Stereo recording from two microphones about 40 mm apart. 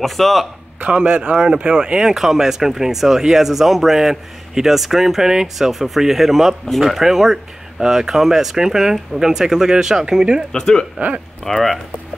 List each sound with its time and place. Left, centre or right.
0.0 s a man's voice: centre
0.7 s a man's voice: right
1.3 s speech: centre
10.5 s speech: centre
11.4 s a man's voice: centre